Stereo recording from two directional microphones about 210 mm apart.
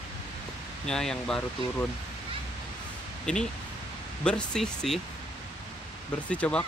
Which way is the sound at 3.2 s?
5° left (ahead or behind).